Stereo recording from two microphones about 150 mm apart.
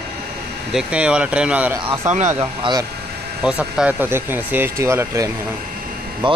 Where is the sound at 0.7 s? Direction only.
5° right (ahead or behind).